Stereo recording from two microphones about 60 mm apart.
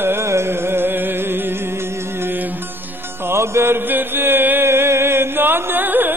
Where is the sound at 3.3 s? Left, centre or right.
Right.